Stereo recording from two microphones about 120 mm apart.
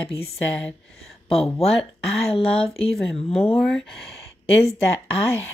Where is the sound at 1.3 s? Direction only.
55° left (ahead or behind).